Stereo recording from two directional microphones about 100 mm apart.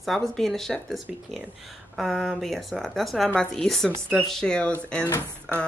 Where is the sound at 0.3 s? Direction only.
5° left (ahead or behind).